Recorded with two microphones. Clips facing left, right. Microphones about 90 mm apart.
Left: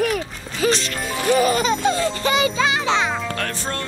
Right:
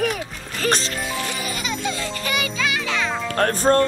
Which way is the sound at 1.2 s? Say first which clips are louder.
Left 11 dB; 40° left (ahead or behind).